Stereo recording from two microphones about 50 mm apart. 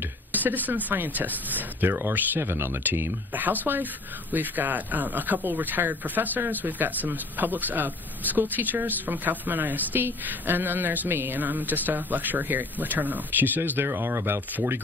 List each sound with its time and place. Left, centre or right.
0.3 s speech: right
1.9 s speech: right
13.7 s speech: right